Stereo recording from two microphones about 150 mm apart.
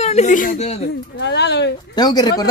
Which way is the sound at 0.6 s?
45° left (ahead or behind).